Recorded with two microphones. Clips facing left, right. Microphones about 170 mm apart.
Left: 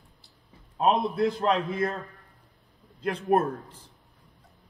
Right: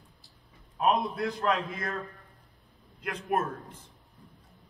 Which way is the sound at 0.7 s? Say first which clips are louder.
Left 3 dB; 25° left (ahead or behind).